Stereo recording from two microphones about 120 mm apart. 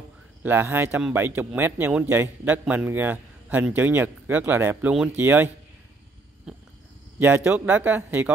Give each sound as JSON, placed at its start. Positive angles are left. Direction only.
{"t": 0.4, "sound": "a man's voice", "side_deg": -20}
{"t": 6.5, "sound": "purr", "side_deg": -5}
{"t": 7.2, "sound": "a man's voice", "side_deg": -15}